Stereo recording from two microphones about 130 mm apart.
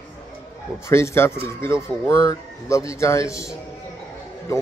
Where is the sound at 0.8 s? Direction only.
20° left (ahead or behind).